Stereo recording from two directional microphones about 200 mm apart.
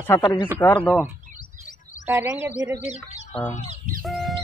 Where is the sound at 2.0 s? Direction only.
10° right (ahead or behind).